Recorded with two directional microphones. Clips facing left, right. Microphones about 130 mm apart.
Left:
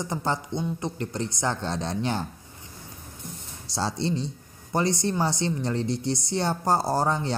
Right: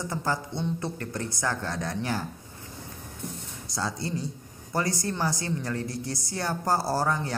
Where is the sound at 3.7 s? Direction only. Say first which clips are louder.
Left 4 dB; 25° left (ahead or behind).